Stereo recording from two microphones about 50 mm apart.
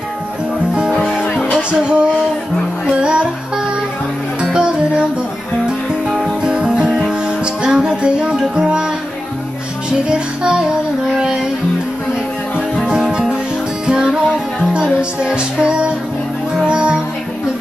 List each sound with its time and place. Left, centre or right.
1.2 s music: left
1.7 s music: right
2.9 s speech: centre
4.5 s music: centre
6.4 s music: centre
12.5 s music: centre